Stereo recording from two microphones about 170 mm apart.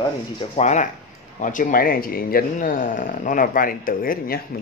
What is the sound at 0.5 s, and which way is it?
Speech, 40° left (ahead or behind).